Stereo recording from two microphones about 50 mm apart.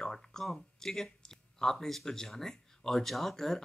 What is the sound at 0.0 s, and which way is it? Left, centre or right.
Speech, centre.